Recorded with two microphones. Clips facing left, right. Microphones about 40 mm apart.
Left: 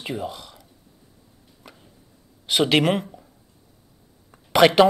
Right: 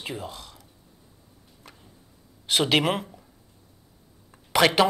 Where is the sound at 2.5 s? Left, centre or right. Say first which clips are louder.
Left 3 dB; centre.